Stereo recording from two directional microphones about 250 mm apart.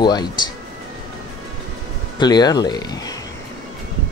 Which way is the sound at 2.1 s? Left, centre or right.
Centre.